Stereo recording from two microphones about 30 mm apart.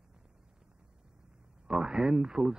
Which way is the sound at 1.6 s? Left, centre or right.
Right.